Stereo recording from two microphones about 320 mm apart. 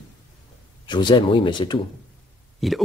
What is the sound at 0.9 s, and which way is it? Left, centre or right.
Speech, centre.